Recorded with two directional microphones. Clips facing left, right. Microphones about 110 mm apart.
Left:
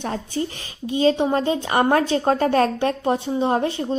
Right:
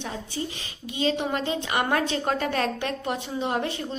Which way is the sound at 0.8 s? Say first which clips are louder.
Left 8 dB; 35° left (ahead or behind).